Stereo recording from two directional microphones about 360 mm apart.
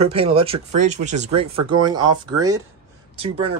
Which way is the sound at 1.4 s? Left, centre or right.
Right.